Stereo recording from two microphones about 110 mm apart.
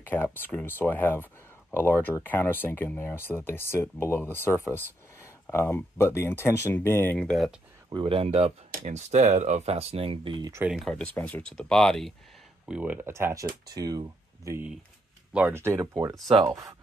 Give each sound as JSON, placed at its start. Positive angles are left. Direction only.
{"t": 0.0, "sound": "speech", "side_deg": 15}
{"t": 4.6, "sound": "a sound", "side_deg": 25}
{"t": 5.9, "sound": "speech", "side_deg": 25}
{"t": 7.2, "sound": "speech", "side_deg": 5}
{"t": 7.9, "sound": "speech", "side_deg": -55}
{"t": 10.9, "sound": "speech", "side_deg": 10}
{"t": 12.6, "sound": "speech", "side_deg": -10}
{"t": 15.3, "sound": "speech", "side_deg": -20}